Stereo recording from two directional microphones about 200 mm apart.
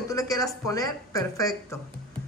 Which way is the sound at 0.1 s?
15° left (ahead or behind).